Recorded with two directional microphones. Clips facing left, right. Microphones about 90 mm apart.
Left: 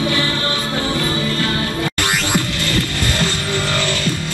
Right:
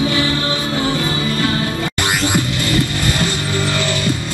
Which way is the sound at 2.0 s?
15° right (ahead or behind).